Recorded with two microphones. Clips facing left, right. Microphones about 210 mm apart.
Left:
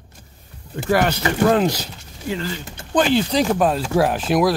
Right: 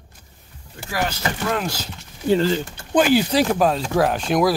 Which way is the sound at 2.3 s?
35° right (ahead or behind).